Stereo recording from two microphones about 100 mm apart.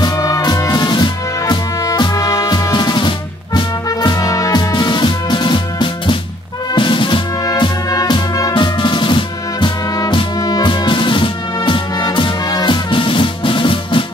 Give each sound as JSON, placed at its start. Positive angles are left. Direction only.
{"t": 0.0, "sound": "music", "side_deg": 40}